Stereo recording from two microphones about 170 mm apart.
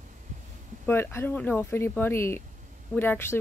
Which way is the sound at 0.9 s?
15° left (ahead or behind).